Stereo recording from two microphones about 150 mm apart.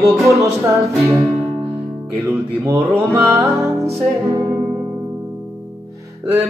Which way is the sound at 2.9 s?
Centre (ahead or behind).